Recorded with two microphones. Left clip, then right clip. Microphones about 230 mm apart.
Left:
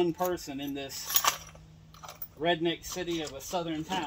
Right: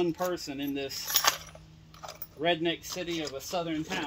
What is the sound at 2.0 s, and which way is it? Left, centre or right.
Speech, right.